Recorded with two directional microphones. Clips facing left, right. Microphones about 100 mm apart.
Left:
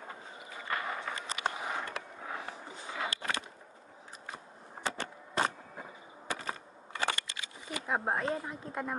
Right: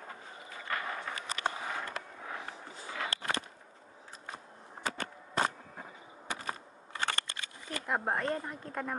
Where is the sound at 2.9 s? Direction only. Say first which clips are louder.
Even; 15° left (ahead or behind).